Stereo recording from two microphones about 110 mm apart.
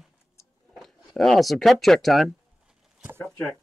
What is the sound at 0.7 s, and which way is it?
Speech, centre (ahead or behind).